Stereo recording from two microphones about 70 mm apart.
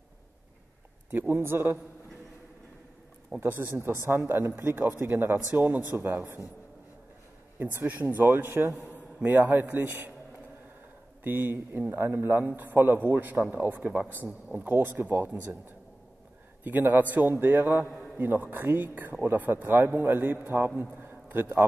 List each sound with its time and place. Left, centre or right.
1.1 s speech: right
3.3 s a man's voice: right
3.7 s a man's voice: right
7.5 s a man's voice: right
11.2 s a man's voice: right
17.8 s a man's voice: centre
18.1 s a man's voice: right